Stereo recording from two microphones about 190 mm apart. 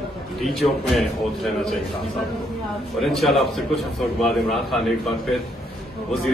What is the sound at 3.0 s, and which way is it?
A man's voice, centre (ahead or behind).